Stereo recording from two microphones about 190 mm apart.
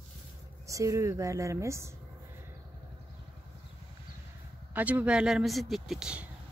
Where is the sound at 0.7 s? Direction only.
15° right (ahead or behind).